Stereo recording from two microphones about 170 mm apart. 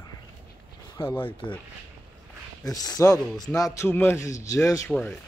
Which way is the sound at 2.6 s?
20° left (ahead or behind).